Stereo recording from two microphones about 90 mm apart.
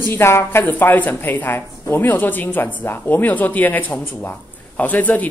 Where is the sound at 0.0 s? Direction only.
25° left (ahead or behind).